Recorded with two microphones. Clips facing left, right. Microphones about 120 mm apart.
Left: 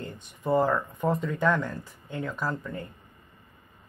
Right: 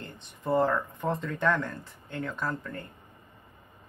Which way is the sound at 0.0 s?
5° left (ahead or behind).